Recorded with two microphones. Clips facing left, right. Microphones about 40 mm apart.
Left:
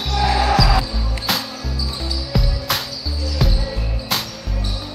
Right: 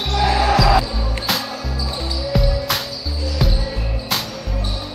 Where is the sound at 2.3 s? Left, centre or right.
Centre.